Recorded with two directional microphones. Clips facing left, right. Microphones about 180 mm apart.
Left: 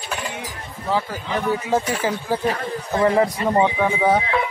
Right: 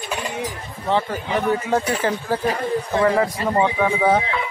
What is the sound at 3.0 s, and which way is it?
Speech, 20° left (ahead or behind).